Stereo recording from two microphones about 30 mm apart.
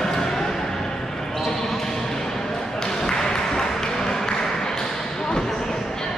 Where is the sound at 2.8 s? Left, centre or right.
Centre.